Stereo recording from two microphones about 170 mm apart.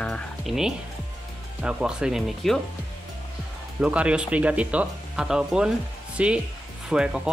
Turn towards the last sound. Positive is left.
turn(degrees=-5)  # may be behind; listen again after turning